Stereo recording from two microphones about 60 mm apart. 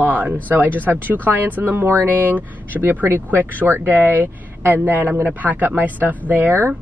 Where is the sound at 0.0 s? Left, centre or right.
Right.